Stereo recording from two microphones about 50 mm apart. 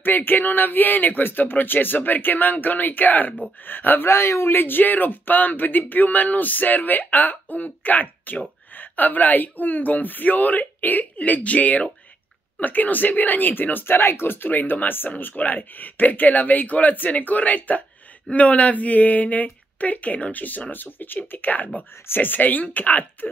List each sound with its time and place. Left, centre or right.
0.0 s speech: left
4.1 s speech: left